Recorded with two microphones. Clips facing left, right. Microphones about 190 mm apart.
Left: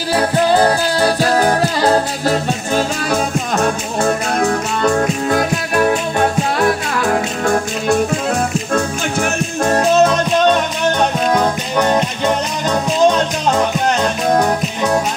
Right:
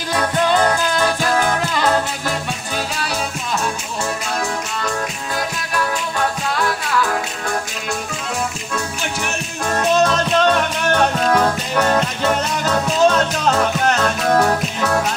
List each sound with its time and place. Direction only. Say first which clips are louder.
0.1 s music: left 4 dB; 35° left (ahead or behind); by 5.4 s 50° left (ahead or behind)
5.8 s music: left 6 dB; 25° left (ahead or behind)
7.0 s music: left 4 dB; 45° left (ahead or behind)
8.7 s music: left 7 dB; 45° left (ahead or behind)
10.9 s music: left 1 dB; 15° left (ahead or behind)